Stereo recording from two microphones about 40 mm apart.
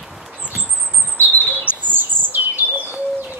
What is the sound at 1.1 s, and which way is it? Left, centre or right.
Chirp, left.